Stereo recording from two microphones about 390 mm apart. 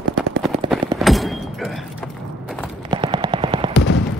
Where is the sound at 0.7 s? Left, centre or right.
Centre.